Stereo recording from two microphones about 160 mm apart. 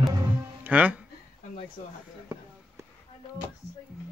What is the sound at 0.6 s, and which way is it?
Music, 10° right (ahead or behind).